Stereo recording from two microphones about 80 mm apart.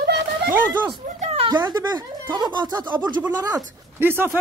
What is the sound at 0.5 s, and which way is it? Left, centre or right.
Speech, right.